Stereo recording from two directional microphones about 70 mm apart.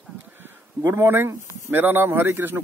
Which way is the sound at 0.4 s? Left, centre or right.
Right.